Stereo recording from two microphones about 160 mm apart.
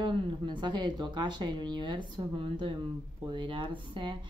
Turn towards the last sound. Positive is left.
turn(degrees=-30)  # may be behind; listen again after turning